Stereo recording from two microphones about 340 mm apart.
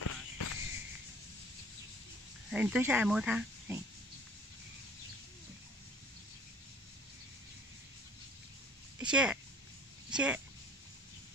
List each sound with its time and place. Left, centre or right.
0.0 s a sound: left
2.5 s speech: centre
9.0 s speech: centre